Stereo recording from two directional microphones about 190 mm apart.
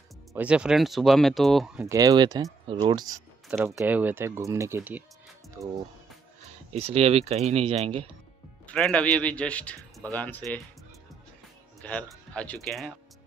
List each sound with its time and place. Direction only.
0.3 s speech: 5° right (ahead or behind)
1.9 s speech: 20° right (ahead or behind)
3.4 s speech: 10° right (ahead or behind)
6.7 s speech: 30° right (ahead or behind)
8.6 s speech: 5° left (ahead or behind)
11.8 s speech: 5° left (ahead or behind)